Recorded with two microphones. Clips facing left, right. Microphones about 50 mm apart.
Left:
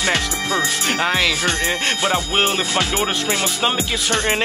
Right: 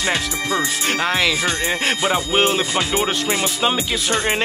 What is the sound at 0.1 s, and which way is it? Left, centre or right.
Speech, left.